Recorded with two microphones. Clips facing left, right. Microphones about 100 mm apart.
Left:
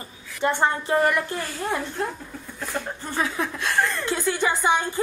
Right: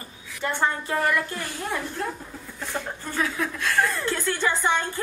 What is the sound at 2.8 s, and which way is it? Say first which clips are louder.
Speech: left 1 dB; centre (ahead or behind).